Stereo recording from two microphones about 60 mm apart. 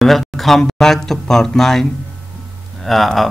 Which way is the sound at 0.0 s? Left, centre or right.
Centre.